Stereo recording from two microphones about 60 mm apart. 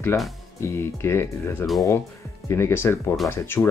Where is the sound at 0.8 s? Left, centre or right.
Left.